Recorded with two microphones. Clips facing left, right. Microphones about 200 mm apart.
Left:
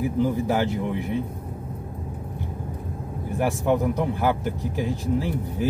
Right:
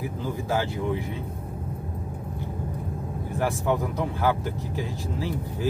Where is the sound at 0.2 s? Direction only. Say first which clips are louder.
Left 5 dB; 15° left (ahead or behind).